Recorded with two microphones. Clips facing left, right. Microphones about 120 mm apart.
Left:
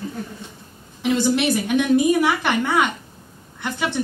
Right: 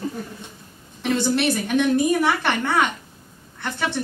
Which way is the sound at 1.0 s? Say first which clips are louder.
Left 2 dB; 10° left (ahead or behind).